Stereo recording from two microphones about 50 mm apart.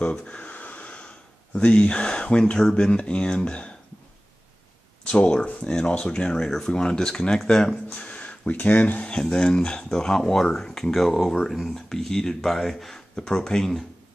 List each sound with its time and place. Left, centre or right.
0.0 s speech: left
5.0 s speech: centre
8.1 s speech: left; by 11.7 s centre
11.7 s speech: centre
13.1 s speech: centre